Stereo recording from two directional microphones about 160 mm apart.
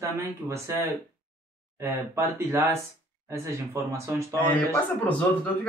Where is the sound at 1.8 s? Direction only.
15° right (ahead or behind).